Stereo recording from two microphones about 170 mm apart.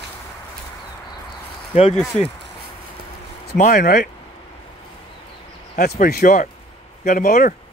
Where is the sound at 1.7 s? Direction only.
40° left (ahead or behind).